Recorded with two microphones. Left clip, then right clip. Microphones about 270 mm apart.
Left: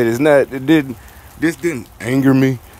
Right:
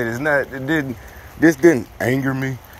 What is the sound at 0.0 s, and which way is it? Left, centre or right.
Speech, left.